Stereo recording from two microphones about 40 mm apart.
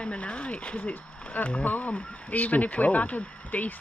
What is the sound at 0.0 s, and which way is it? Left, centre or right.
Speech, left.